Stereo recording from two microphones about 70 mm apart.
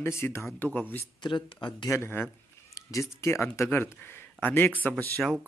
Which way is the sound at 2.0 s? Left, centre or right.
Left.